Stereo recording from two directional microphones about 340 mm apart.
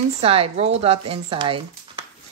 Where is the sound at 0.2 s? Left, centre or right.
Centre.